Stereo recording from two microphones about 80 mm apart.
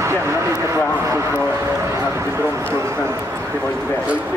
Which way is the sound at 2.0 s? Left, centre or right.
Right.